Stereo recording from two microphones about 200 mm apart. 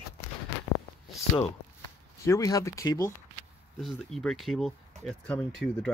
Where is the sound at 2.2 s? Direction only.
15° left (ahead or behind).